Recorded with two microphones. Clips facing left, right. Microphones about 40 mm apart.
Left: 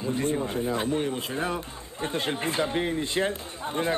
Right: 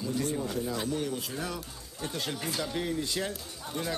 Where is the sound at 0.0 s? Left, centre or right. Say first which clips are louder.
Left 4 dB; left.